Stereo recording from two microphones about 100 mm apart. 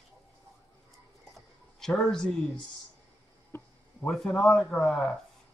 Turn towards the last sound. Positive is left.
turn(degrees=0)  # may be behind; listen again after turning